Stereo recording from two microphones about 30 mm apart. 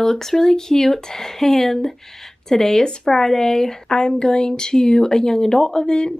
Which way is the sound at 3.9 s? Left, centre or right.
Left.